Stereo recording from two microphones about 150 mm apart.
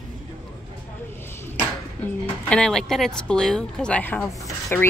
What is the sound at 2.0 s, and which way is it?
Speech, 5° left (ahead or behind).